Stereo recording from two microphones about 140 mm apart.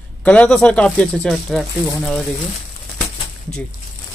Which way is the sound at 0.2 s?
10° left (ahead or behind).